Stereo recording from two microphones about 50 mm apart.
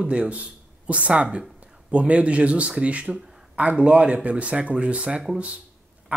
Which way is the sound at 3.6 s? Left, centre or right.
Right.